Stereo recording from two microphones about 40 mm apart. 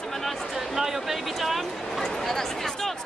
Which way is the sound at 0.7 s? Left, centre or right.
Centre.